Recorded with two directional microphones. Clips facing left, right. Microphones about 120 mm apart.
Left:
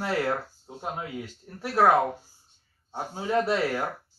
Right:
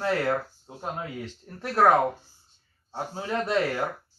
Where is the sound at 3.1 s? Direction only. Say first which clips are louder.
Left 2 dB; 10° left (ahead or behind).